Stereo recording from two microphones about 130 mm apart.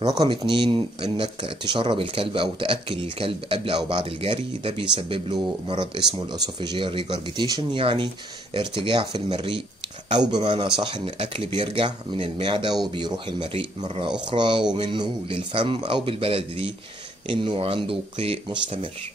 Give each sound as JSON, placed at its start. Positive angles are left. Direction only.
{"t": 0.0, "sound": "speech", "side_deg": -30}